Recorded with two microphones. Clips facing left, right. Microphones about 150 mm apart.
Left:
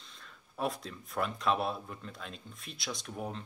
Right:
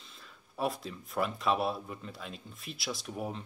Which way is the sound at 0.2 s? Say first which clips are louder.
Right 1 dB; centre (ahead or behind).